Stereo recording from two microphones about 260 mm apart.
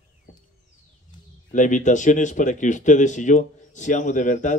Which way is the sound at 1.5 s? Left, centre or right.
Left.